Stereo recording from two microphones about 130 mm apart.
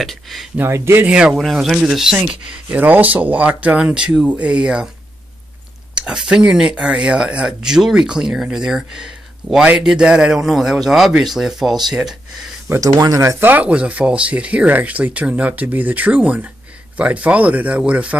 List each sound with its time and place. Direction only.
0.0 s speech: centre (ahead or behind)
0.6 s speech: 20° right (ahead or behind)
1.0 s speech: 5° right (ahead or behind)
5.9 s speech: 5° right (ahead or behind)
12.6 s speech: 20° right (ahead or behind)